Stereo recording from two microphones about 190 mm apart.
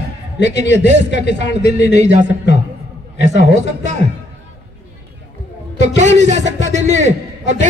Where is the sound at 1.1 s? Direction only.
65° left (ahead or behind).